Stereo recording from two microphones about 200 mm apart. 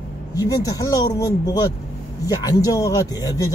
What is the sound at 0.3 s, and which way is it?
A man's voice, 15° left (ahead or behind).